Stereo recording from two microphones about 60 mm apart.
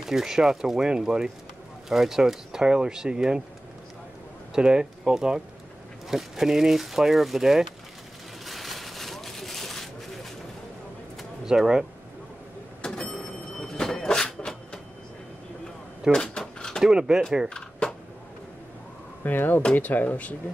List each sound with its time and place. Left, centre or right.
0.0 s speech: centre
4.6 s speech: centre
8.5 s a sound: centre
11.4 s speech: centre
12.8 s a sound: centre
16.1 s drawer open or close: centre
17.1 s speech: centre
17.6 s a sound: centre
19.2 s speech: left